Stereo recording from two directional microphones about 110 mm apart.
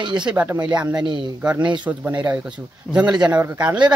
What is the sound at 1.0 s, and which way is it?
Speech, 45° right (ahead or behind).